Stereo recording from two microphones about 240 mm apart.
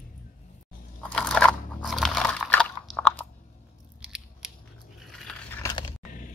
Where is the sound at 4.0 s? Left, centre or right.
Centre.